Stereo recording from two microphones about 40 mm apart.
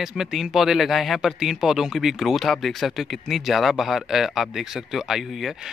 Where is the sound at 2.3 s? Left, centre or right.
Centre.